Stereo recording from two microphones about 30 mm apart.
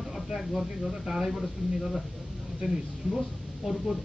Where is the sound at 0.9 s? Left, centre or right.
Centre.